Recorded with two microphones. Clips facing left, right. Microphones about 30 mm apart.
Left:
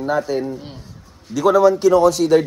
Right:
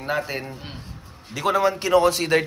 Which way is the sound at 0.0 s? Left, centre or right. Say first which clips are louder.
Left 6 dB; right.